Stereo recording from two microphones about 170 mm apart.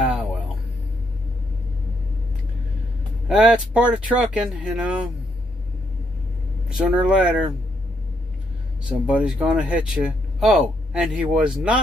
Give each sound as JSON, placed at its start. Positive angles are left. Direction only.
{"t": 3.3, "sound": "speech", "side_deg": -5}
{"t": 6.8, "sound": "speech", "side_deg": -5}
{"t": 8.8, "sound": "speech", "side_deg": -5}